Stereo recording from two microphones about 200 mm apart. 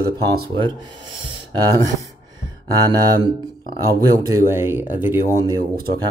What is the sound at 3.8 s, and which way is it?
Speech, 20° right (ahead or behind).